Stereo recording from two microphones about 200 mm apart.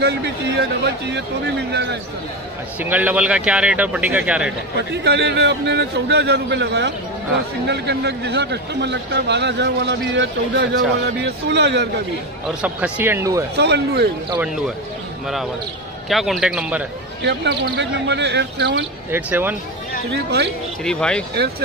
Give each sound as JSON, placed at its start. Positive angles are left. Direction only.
{"t": 0.0, "sound": "speech", "side_deg": -55}
{"t": 2.8, "sound": "a man's voice", "side_deg": -10}
{"t": 4.9, "sound": "speech", "side_deg": -55}
{"t": 12.4, "sound": "a man's voice", "side_deg": -5}
{"t": 13.6, "sound": "speech", "side_deg": -55}
{"t": 16.1, "sound": "a man's voice", "side_deg": 0}
{"t": 17.2, "sound": "speech", "side_deg": -60}
{"t": 19.0, "sound": "a man's voice", "side_deg": -10}
{"t": 20.1, "sound": "speech", "side_deg": -55}
{"t": 20.8, "sound": "a man's voice", "side_deg": 5}